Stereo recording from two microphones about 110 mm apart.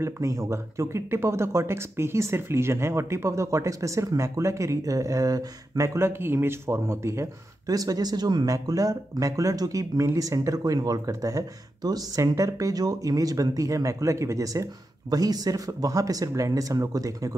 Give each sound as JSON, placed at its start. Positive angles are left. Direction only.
{"t": 0.0, "sound": "speech", "side_deg": -25}